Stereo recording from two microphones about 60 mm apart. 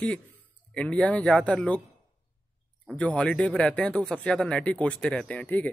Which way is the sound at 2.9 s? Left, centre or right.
Left.